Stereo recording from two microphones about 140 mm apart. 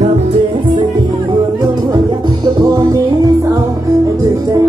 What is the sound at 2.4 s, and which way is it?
Music, 35° right (ahead or behind).